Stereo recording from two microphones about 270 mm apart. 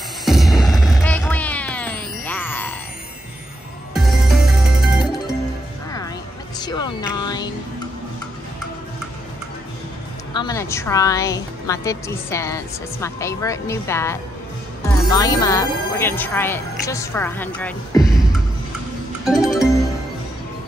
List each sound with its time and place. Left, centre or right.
0.2 s music: centre
3.9 s music: centre
6.6 s a sound: centre
10.3 s a woman's voice: centre
19.2 s music: centre